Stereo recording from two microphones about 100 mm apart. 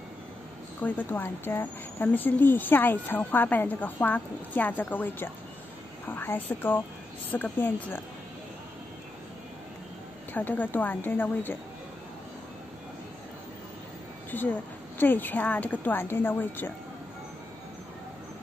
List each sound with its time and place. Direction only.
0.8 s speech: 15° left (ahead or behind)
10.3 s speech: 15° left (ahead or behind)
14.3 s speech: 20° left (ahead or behind)